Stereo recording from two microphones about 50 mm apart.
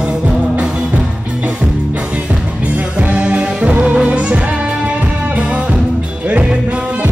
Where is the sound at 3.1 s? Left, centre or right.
Right.